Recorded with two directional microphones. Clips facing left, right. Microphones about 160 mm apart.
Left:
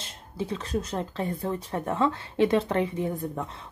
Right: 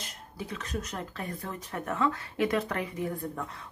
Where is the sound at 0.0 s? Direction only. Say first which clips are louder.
Left 6 dB; 25° left (ahead or behind).